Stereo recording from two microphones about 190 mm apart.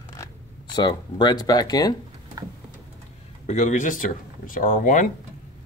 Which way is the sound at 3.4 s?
35° left (ahead or behind).